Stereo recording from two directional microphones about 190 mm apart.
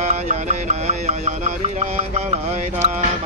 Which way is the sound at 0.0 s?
40° right (ahead or behind).